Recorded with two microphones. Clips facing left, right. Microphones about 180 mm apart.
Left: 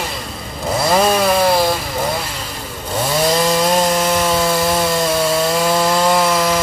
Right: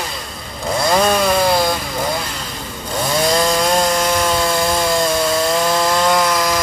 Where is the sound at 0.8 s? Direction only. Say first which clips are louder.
Left 1 dB; 5° left (ahead or behind).